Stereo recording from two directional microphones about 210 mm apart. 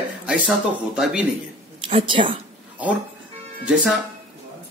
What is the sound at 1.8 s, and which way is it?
Speech, 25° right (ahead or behind).